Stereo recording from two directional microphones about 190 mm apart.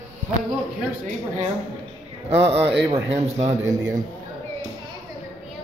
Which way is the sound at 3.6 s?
15° right (ahead or behind).